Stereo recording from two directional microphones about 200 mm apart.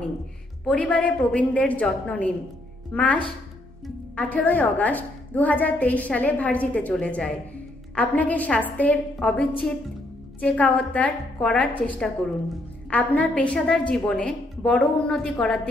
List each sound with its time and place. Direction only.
0.7 s a woman's voice: 5° left (ahead or behind)